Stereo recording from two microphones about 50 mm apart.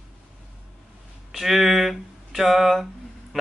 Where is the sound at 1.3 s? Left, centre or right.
Centre.